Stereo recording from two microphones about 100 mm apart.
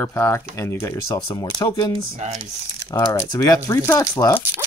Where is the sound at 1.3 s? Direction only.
40° left (ahead or behind).